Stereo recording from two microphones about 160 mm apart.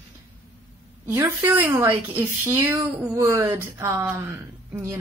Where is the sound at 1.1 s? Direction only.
10° right (ahead or behind).